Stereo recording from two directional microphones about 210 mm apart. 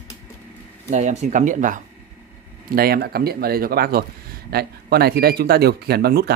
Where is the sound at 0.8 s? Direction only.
35° right (ahead or behind).